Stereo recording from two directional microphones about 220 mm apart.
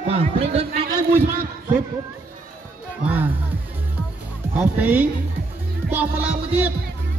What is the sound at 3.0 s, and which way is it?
Music, 10° right (ahead or behind).